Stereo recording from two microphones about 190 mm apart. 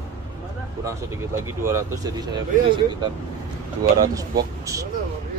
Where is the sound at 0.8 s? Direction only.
15° right (ahead or behind).